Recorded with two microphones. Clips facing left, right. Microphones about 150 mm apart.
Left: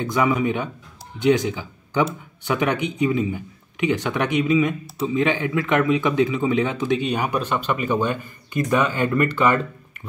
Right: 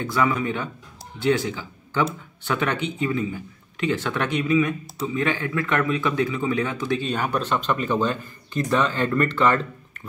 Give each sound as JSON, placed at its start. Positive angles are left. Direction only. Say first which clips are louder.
{"t": 0.0, "sound": "speech", "louder": "left 3 dB", "side_deg": 15}